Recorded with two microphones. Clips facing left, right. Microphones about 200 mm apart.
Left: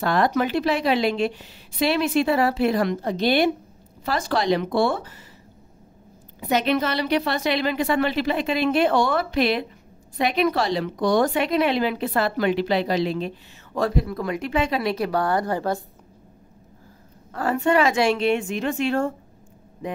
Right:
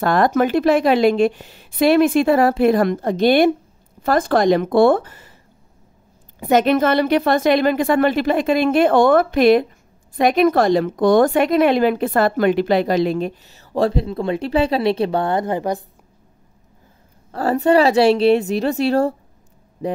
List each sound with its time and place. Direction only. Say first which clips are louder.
0.0 s a woman's voice: right 5 dB; 50° right (ahead or behind)
6.4 s a woman's voice: right 7 dB; 50° right (ahead or behind)
13.7 s speech: right 5 dB; 30° right (ahead or behind)
17.3 s a woman's voice: right 5 dB; 35° right (ahead or behind)